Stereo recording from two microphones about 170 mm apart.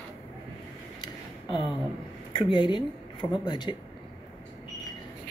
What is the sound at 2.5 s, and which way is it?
Speech, 30° left (ahead or behind).